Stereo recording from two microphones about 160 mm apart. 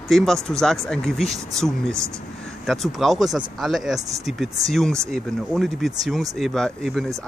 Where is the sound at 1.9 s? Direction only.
20° right (ahead or behind).